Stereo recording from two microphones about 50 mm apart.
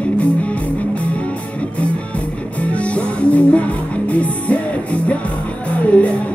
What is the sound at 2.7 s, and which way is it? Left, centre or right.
Music, left.